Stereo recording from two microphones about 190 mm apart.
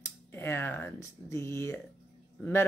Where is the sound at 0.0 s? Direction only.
10° left (ahead or behind).